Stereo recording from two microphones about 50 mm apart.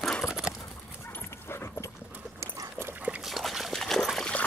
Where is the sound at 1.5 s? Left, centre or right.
Left.